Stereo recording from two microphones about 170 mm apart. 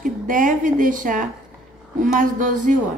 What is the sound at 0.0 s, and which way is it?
A woman's voice, 50° right (ahead or behind).